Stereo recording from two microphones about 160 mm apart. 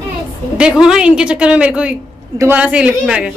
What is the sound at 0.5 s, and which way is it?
A woman's voice, 5° right (ahead or behind).